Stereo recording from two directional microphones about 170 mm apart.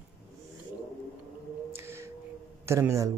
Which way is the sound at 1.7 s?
15° right (ahead or behind).